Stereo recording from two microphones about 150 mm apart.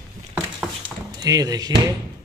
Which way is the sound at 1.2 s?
25° right (ahead or behind).